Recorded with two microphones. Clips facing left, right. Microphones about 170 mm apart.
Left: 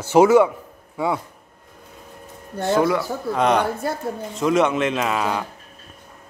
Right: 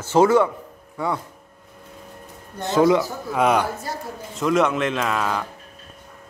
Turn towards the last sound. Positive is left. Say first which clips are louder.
# left 1 dB
turn(degrees=5)  # may be behind; listen again after turning